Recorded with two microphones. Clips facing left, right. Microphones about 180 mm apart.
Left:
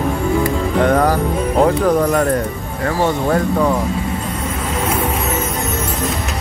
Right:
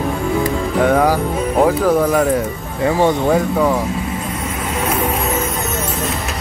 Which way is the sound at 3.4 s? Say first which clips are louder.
Even; 5° right (ahead or behind).